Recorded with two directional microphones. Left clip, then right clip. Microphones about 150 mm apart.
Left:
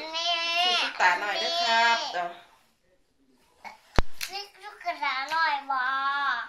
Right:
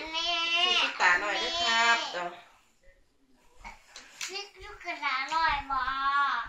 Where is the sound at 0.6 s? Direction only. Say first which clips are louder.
Left 1 dB; 20° left (ahead or behind).